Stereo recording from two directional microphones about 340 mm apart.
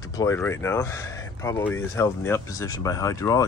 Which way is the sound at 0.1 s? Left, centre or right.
Centre.